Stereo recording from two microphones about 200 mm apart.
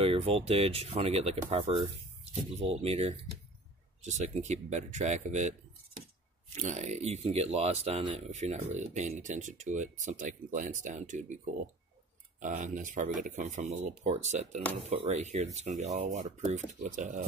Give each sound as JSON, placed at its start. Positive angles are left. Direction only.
{"t": 0.0, "sound": "speech", "side_deg": -30}
{"t": 6.5, "sound": "speech", "side_deg": -35}
{"t": 12.4, "sound": "speech", "side_deg": -40}